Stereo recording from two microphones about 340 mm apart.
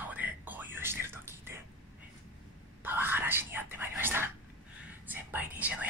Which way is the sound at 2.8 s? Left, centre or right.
Centre.